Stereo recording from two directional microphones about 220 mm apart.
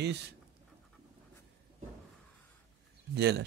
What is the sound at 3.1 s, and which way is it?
Speech, 50° right (ahead or behind).